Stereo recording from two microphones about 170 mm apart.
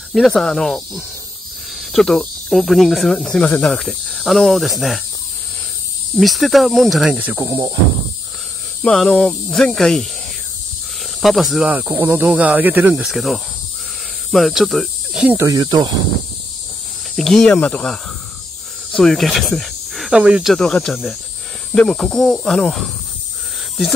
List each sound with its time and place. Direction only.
0.1 s speech: centre (ahead or behind)
6.1 s speech: centre (ahead or behind)
7.4 s speech: 25° right (ahead or behind)
8.8 s speech: 5° left (ahead or behind)
11.1 s speech: centre (ahead or behind)
15.3 s speech: 20° right (ahead or behind)
17.1 s speech: centre (ahead or behind)
18.9 s speech: centre (ahead or behind)